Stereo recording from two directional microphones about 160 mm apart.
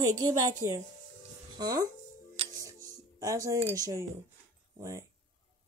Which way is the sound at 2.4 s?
20° right (ahead or behind).